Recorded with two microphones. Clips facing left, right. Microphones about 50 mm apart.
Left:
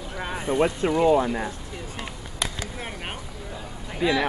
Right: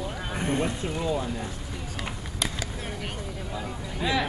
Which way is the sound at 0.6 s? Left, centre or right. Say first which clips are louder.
Left 8 dB; left.